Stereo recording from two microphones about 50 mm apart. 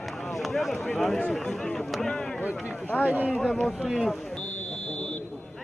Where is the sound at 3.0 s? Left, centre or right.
Right.